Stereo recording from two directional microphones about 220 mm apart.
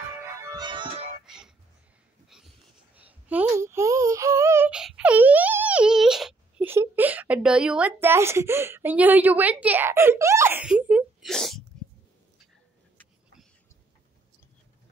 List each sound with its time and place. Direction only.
0.2 s music: 10° right (ahead or behind)
1.2 s music: centre (ahead or behind)
2.2 s a sound: centre (ahead or behind)